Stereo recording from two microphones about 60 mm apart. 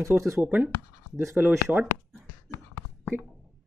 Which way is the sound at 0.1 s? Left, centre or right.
Right.